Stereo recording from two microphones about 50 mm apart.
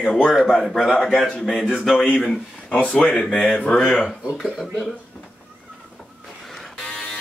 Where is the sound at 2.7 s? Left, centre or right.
Left.